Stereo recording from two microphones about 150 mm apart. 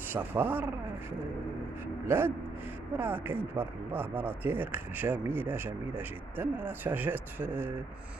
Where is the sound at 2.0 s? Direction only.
15° right (ahead or behind).